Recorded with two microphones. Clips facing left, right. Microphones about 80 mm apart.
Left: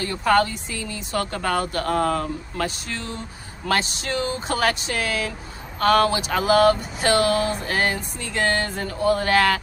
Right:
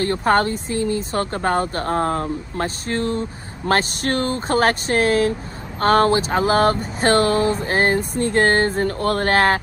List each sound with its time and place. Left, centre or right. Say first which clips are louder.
0.0 s speech: right 2 dB; right